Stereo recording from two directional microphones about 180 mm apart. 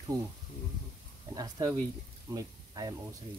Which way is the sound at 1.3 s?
20° right (ahead or behind).